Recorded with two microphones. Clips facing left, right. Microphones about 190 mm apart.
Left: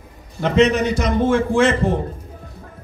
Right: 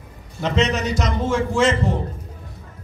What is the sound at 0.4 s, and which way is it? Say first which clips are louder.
A man's voice: left 5 dB; 55° left (ahead or behind).